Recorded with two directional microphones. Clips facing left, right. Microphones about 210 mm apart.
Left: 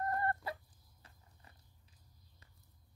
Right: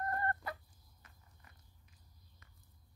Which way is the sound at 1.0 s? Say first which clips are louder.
Left 2 dB; 30° left (ahead or behind).